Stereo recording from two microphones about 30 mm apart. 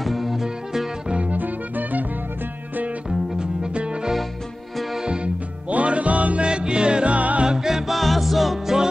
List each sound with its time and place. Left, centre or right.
0.0 s music: centre
1.0 s music: right
1.3 s music: right
3.7 s music: right
5.7 s music: right
6.4 s music: right
7.2 s music: right
7.4 s music: centre
7.9 s music: centre